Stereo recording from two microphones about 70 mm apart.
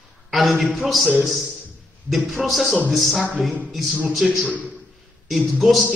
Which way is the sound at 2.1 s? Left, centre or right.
Centre.